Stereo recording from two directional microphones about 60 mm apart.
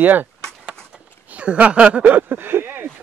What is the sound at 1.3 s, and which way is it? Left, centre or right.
Speech, right.